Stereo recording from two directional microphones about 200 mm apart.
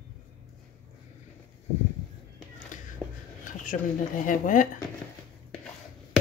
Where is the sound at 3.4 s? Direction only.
40° left (ahead or behind).